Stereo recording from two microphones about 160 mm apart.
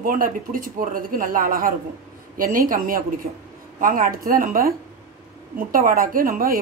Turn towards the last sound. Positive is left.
turn(degrees=-60)  # may be behind; listen again after turning